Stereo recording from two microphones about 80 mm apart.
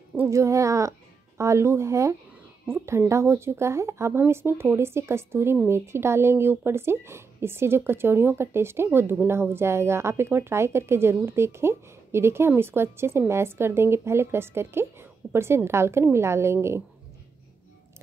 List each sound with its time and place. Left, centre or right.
0.2 s speech: right